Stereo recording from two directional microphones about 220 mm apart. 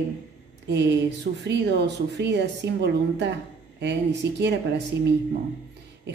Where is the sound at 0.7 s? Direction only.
50° right (ahead or behind).